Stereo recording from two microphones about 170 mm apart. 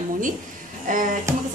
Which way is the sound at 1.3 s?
15° right (ahead or behind).